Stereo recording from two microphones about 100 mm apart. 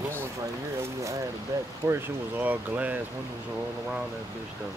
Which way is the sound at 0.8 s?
30° right (ahead or behind).